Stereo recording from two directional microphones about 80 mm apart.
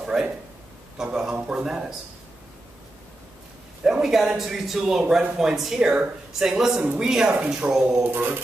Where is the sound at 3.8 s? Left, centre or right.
Centre.